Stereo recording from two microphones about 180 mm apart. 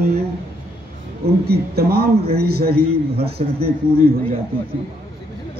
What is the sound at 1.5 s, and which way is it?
A man's voice, 60° right (ahead or behind).